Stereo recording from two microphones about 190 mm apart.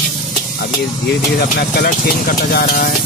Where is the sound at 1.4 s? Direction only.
55° left (ahead or behind).